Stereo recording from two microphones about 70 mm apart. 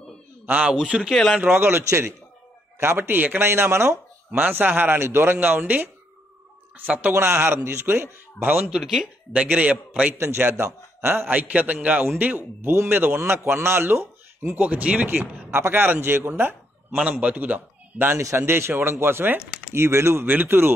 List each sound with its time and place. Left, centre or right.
0.5 s a man's voice: centre
1.4 s speech: right
4.3 s speech: right
6.9 s speech: right
7.2 s speech: right
8.5 s a man's voice: centre
10.1 s a man's voice: right
11.2 s speech: right
15.5 s speech: right
17.2 s speech: right
18.1 s speech: right